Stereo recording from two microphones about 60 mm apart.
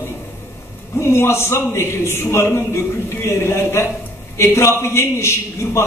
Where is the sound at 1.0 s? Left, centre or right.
Left.